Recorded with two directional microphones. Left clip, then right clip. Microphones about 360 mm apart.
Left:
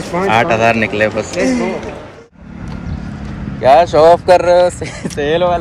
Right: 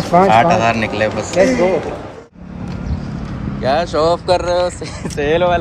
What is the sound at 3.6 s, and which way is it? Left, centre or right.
Speech, centre.